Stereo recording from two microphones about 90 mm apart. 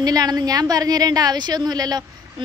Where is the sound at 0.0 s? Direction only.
45° right (ahead or behind).